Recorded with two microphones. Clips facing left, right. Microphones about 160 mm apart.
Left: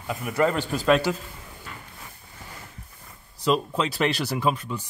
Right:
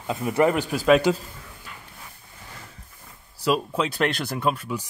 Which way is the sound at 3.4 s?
5° right (ahead or behind).